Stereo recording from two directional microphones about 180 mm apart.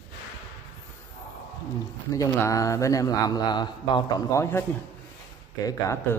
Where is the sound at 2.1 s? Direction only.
15° left (ahead or behind).